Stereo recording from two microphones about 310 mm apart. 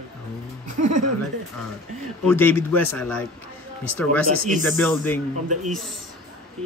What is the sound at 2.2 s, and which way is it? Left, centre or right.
Speech, centre.